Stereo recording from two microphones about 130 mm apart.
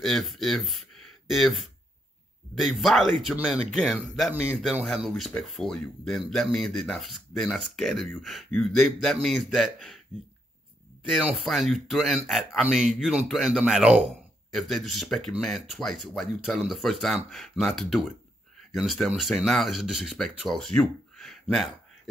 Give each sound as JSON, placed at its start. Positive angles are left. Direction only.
{"t": 0.0, "sound": "a man's voice", "side_deg": 0}
{"t": 11.1, "sound": "a man's voice", "side_deg": -5}